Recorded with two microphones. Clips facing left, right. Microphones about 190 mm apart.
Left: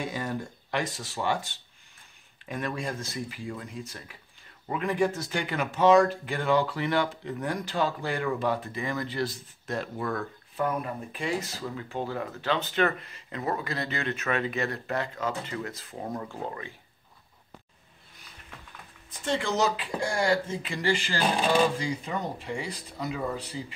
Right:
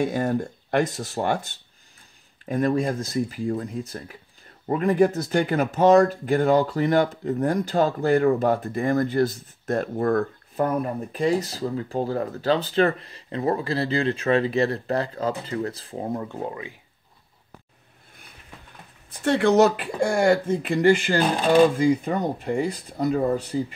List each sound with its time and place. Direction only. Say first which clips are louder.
0.0 s speech: right 9 dB; 50° right (ahead or behind); by 16.7 s 15° right (ahead or behind)
19.0 s speech: right 9 dB; 65° right (ahead or behind); by 23.6 s 50° right (ahead or behind)